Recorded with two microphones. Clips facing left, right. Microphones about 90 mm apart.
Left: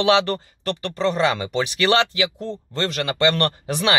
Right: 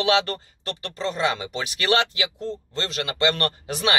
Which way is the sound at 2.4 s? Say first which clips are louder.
Left 4 dB; 45° left (ahead or behind).